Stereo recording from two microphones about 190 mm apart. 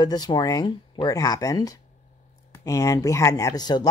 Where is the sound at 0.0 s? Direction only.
20° left (ahead or behind).